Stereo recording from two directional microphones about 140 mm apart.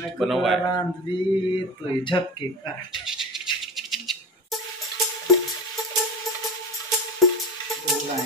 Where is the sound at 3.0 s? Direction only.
5° right (ahead or behind).